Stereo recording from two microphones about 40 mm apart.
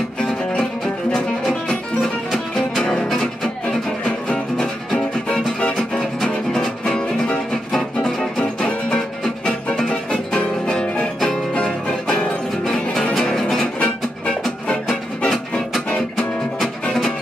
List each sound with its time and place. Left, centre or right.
1.1 s music: centre
4.3 s music: left
7.7 s music: centre
8.4 s music: left
10.1 s music: left
13.2 s music: centre
13.7 s music: left
14.9 s music: centre